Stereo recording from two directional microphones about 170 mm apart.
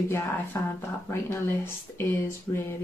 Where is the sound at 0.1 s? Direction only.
15° left (ahead or behind).